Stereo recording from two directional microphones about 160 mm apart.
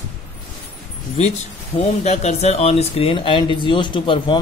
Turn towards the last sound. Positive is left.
turn(degrees=30)  # may be behind; listen again after turning